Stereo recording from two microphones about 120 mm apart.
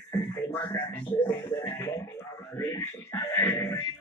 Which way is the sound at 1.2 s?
15° left (ahead or behind).